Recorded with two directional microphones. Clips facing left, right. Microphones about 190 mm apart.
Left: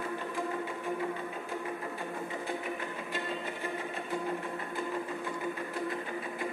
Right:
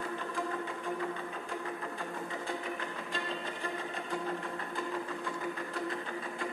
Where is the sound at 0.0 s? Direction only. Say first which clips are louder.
Left 1 dB; 15° left (ahead or behind).